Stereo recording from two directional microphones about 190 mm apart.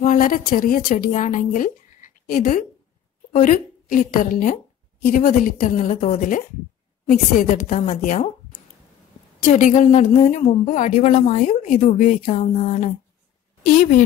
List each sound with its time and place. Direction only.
0.0 s a woman's voice: 45° left (ahead or behind)